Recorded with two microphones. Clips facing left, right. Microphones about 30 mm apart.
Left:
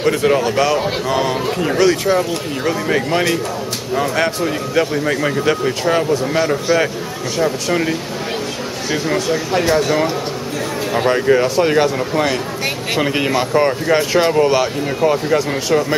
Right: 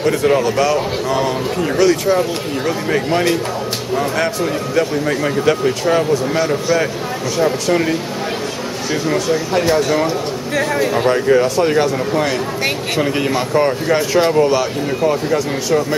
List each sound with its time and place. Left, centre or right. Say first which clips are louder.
0.0 s a man's voice: even; centre
9.1 s a man's voice: right 1 dB; centre
12.9 s a man's voice: left 2 dB; centre